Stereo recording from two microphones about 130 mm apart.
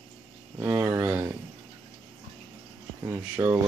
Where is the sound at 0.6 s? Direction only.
20° right (ahead or behind).